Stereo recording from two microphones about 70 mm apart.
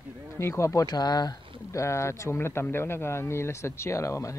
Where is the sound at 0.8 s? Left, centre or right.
Left.